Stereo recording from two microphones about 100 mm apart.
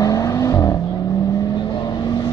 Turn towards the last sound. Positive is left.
turn(degrees=35)  # may be behind; listen again after turning